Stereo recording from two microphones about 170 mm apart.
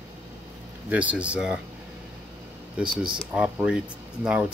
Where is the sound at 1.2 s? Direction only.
5° right (ahead or behind).